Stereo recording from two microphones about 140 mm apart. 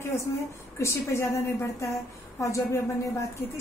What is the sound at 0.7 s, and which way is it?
A woman's voice, 20° left (ahead or behind).